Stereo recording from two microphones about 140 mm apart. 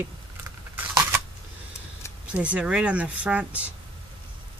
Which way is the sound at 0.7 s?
20° right (ahead or behind).